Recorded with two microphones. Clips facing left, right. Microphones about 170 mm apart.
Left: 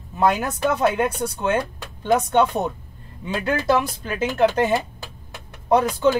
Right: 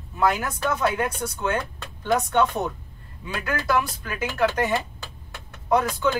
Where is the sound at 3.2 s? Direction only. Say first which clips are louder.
Left 5 dB; 25° left (ahead or behind).